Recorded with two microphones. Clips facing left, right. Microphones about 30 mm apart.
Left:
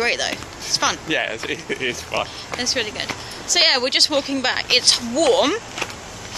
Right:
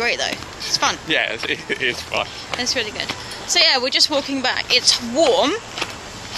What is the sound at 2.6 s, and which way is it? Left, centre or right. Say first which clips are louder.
Speech: even; centre.